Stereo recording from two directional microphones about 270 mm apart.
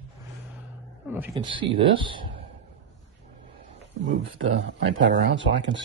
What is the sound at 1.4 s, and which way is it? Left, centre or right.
Speech, centre.